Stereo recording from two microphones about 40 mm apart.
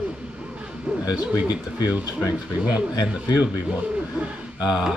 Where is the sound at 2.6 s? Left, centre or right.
Right.